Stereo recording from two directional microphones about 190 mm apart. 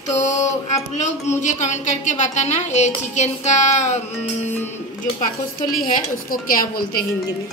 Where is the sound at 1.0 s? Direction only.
40° left (ahead or behind).